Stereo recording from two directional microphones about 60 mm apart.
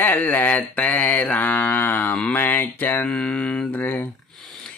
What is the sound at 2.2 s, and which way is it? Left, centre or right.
Mantra, left.